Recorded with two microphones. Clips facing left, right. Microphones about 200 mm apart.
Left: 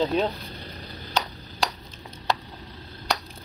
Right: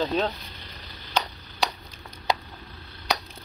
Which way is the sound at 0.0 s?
15° left (ahead or behind).